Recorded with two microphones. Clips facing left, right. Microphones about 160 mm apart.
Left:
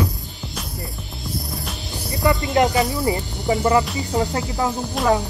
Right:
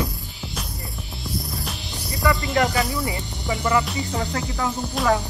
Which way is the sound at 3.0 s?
35° left (ahead or behind).